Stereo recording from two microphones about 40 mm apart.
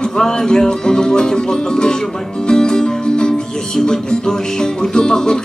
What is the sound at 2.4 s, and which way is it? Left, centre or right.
Music, centre.